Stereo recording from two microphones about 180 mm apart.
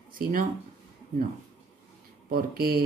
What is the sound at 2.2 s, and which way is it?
Speech, 55° right (ahead or behind).